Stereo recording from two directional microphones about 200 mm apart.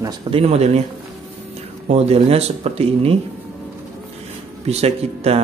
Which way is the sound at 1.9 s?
30° right (ahead or behind).